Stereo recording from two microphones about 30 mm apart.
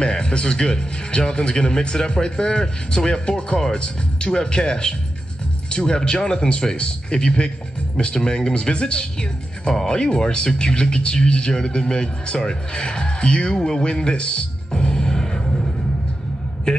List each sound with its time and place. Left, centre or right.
0.0 s a man's voice: left
14.7 s music: left